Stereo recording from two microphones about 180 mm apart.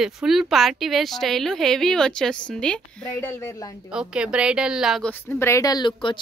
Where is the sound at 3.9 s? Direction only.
5° right (ahead or behind).